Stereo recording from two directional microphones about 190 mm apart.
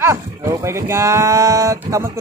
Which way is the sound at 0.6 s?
15° right (ahead or behind).